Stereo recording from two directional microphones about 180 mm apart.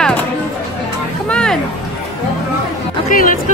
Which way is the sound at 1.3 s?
5° left (ahead or behind).